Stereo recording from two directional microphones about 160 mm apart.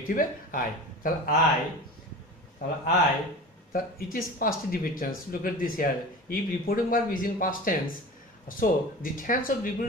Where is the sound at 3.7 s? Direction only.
65° left (ahead or behind).